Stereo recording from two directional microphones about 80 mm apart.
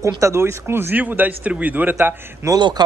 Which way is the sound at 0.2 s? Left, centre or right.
Right.